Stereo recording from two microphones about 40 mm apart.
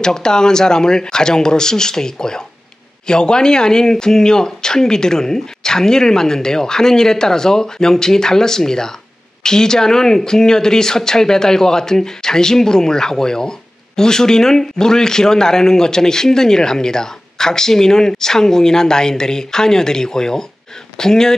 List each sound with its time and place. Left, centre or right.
0.0 s speech: centre